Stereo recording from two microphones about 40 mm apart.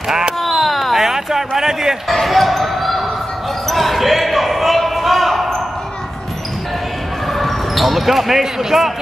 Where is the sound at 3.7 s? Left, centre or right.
Centre.